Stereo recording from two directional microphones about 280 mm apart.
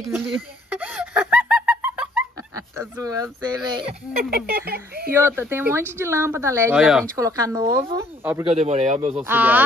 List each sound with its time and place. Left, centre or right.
0.0 s a sound: centre
4.2 s speech: right
5.1 s speech: centre
7.2 s speech: centre
8.5 s a man's voice: right
9.2 s speech: centre